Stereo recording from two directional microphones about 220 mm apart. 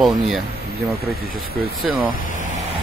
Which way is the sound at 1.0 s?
45° right (ahead or behind).